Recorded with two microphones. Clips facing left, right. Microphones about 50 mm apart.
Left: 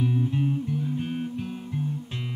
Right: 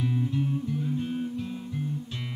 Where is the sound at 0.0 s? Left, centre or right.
Left.